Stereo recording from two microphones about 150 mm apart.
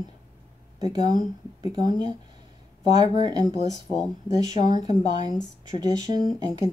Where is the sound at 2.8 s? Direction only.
50° left (ahead or behind).